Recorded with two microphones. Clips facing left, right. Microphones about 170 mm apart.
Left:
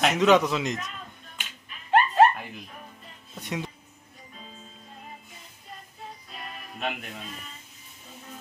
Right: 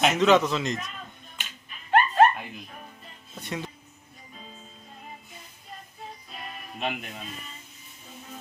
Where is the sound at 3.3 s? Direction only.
15° left (ahead or behind).